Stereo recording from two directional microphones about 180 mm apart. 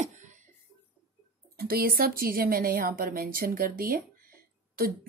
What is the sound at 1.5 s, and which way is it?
A woman's voice, 55° right (ahead or behind).